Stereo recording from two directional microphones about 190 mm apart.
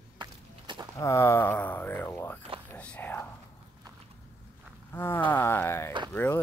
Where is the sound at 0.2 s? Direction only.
20° right (ahead or behind).